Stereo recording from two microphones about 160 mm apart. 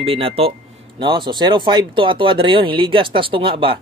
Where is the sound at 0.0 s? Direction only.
35° right (ahead or behind).